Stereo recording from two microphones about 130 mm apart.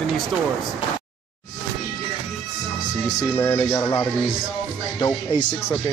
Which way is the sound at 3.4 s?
10° left (ahead or behind).